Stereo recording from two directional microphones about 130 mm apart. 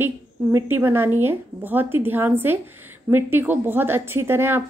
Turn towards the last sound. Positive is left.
turn(degrees=-15)  # may be behind; listen again after turning